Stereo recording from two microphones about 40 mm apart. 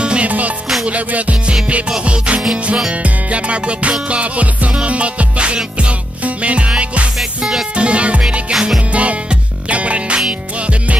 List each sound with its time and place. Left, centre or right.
0.0 s music: right
0.8 s music: right
7.2 s music: centre
7.7 s music: right